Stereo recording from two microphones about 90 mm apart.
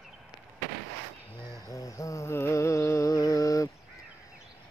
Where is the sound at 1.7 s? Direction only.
35° left (ahead or behind).